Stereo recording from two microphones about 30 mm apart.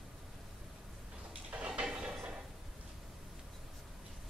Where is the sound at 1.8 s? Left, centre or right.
Right.